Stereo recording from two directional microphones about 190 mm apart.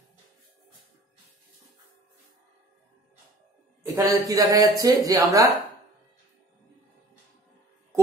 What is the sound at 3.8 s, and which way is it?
Speech, 15° right (ahead or behind).